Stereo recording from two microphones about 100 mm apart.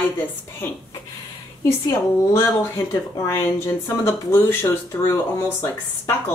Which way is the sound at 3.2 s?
25° left (ahead or behind).